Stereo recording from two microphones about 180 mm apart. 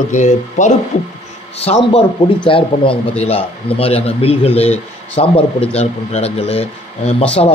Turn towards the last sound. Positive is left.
turn(degrees=35)  # may be behind; listen again after turning